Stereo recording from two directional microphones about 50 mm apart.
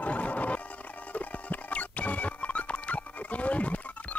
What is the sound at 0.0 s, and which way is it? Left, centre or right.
Music, left.